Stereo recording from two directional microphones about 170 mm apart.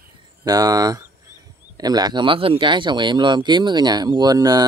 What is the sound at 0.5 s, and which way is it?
Speech, 20° right (ahead or behind).